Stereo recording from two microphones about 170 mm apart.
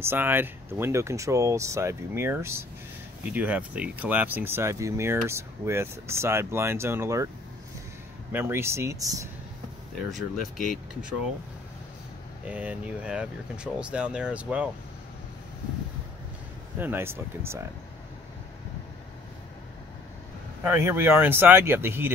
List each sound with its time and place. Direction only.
0.0 s speech: 15° right (ahead or behind)
8.3 s speech: 15° right (ahead or behind)
10.1 s speech: centre (ahead or behind)
12.4 s speech: 10° right (ahead or behind)
16.7 s speech: 10° right (ahead or behind)
20.6 s speech: 15° right (ahead or behind)